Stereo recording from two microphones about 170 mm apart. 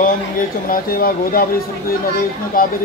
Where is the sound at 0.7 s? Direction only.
60° left (ahead or behind).